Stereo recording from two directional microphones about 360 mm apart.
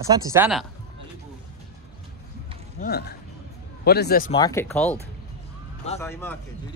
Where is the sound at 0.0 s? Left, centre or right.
Centre.